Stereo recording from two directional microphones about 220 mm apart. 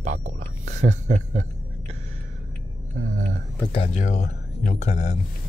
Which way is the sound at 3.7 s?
30° left (ahead or behind).